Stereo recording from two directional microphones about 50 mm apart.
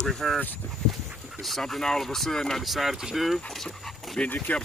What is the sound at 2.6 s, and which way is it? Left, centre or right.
Speech, centre.